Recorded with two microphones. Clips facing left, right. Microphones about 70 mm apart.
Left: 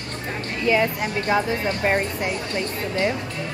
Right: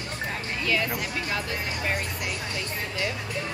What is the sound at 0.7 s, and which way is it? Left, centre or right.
Speech, left.